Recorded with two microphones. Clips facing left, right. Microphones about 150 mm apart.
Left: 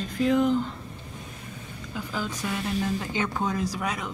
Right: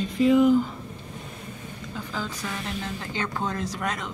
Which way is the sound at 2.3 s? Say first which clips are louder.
Left 3 dB; 20° left (ahead or behind).